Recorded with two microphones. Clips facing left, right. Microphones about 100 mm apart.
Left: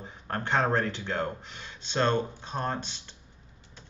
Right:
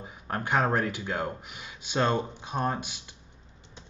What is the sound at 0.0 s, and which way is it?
Speech, 10° right (ahead or behind).